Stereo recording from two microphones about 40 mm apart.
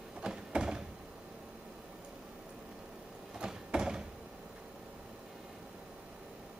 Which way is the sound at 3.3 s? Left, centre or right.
Centre.